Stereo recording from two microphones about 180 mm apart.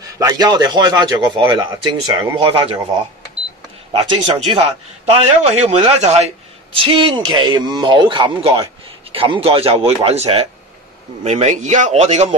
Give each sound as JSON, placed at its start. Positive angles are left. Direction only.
{"t": 0.0, "sound": "speech", "side_deg": -20}
{"t": 3.9, "sound": "speech", "side_deg": -30}